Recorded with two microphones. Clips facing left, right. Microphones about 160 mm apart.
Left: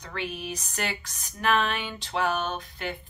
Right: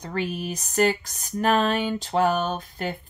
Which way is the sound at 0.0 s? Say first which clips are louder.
Right 6 dB; 40° right (ahead or behind).